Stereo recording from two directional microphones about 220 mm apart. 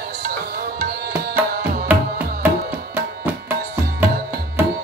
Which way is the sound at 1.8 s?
10° right (ahead or behind).